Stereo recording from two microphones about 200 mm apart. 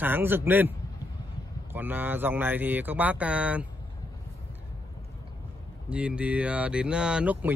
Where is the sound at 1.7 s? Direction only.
10° right (ahead or behind).